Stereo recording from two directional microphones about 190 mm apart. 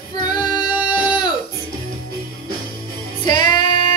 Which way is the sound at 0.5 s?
5° right (ahead or behind).